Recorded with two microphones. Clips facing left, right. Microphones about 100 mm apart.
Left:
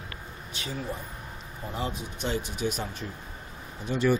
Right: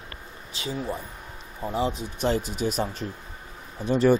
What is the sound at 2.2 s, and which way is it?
Speech, 40° right (ahead or behind).